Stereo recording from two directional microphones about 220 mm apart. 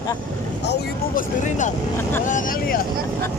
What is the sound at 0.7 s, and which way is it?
Speech, 40° left (ahead or behind).